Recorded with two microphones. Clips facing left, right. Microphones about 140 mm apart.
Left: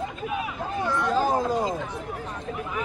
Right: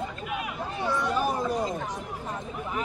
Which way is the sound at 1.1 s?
90° left.